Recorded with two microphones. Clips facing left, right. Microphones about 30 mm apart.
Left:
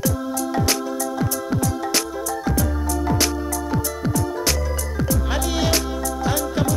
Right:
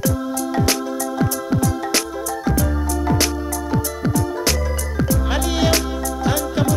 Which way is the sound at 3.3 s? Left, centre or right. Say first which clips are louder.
Right 1 dB; right.